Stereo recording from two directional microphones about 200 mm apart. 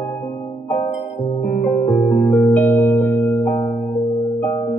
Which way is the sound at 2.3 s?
10° left (ahead or behind).